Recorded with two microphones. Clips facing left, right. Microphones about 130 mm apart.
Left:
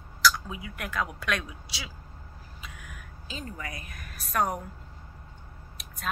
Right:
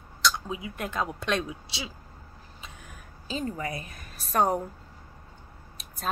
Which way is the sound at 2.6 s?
30° right (ahead or behind).